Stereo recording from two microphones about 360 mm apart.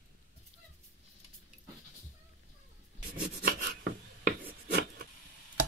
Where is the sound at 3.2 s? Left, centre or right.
Right.